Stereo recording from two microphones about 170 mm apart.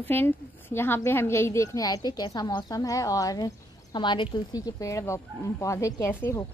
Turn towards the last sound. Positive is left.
turn(degrees=10)  # may be behind; listen again after turning